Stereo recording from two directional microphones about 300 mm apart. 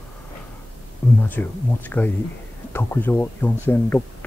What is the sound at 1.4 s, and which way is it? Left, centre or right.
Speech, centre.